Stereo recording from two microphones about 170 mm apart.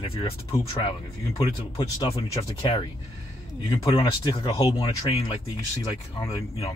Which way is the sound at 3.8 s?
25° left (ahead or behind).